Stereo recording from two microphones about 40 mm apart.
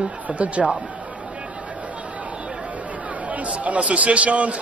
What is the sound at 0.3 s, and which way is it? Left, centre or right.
Speech, right.